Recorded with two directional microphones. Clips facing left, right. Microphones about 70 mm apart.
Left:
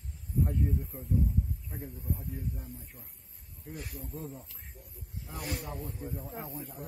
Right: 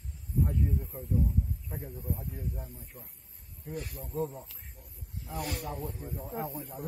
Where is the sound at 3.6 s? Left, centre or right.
Centre.